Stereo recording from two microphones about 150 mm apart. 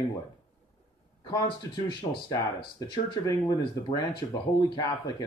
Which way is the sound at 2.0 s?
40° left (ahead or behind).